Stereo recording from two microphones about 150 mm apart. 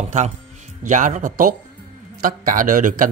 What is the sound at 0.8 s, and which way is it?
A man's voice, 55° right (ahead or behind).